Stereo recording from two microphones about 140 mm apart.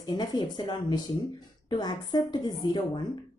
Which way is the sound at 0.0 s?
30° left (ahead or behind).